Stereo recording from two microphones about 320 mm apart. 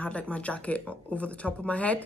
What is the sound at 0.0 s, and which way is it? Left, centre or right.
Speech, centre.